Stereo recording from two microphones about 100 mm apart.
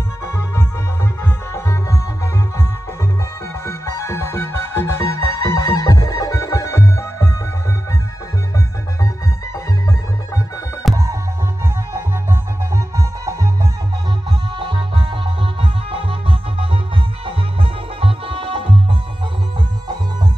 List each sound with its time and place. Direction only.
0.2 s music: 25° left (ahead or behind)
3.6 s music: 25° left (ahead or behind)
10.8 s music: centre (ahead or behind)
11.9 s music: 25° right (ahead or behind)
14.6 s music: 50° right (ahead or behind)
15.6 s music: 65° right (ahead or behind)
18.0 s music: 70° right (ahead or behind)